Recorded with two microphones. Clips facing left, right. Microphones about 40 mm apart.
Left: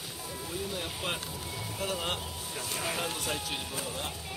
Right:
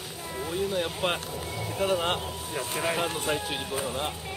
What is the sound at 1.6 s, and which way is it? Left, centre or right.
Speech, right.